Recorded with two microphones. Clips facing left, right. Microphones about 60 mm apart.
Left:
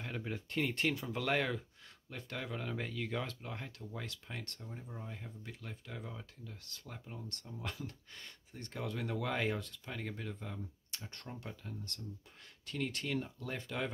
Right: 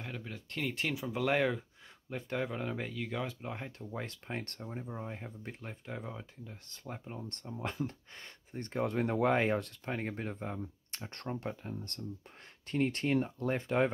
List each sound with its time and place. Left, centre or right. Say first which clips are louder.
0.2 s speech: left 3 dB; centre
3.3 s speech: right 4 dB; right
9.6 s speech: right 7 dB; right
9.9 s speech: right 4 dB; right